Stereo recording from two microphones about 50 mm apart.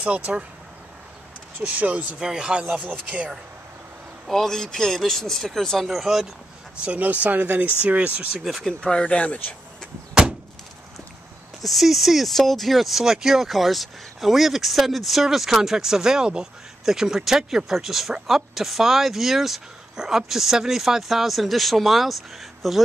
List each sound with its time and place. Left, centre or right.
0.0 s speech: right
1.6 s speech: right
2.8 s speech: right
4.3 s speech: centre
7.0 s speech: right
8.3 s speech: centre
9.0 s speech: left
11.6 s speech: centre